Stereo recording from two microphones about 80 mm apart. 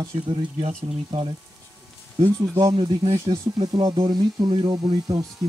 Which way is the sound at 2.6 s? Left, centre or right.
Right.